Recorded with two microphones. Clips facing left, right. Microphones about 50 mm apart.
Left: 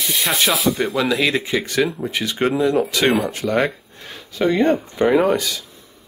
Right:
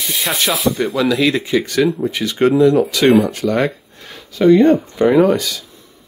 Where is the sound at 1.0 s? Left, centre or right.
Centre.